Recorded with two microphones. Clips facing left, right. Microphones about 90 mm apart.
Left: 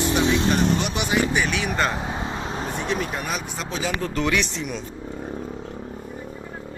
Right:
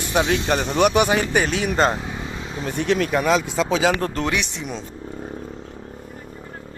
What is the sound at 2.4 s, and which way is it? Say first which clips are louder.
Vehicle: right 1 dB; 45° left (ahead or behind).